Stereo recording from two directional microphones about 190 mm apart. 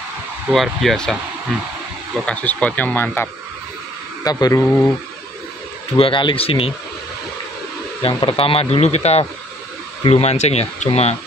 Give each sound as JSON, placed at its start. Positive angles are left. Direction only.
{"t": 0.5, "sound": "speech", "side_deg": 0}
{"t": 5.9, "sound": "speech", "side_deg": 25}
{"t": 8.0, "sound": "speech", "side_deg": 25}